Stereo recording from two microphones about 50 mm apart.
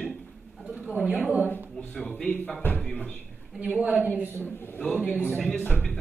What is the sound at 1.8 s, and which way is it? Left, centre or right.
Speech, left.